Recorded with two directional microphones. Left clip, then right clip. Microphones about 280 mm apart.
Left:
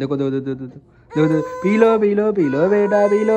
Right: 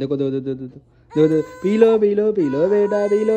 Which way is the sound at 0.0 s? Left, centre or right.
Centre.